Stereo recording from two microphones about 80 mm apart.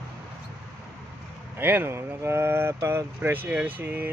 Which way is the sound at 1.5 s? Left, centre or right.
Right.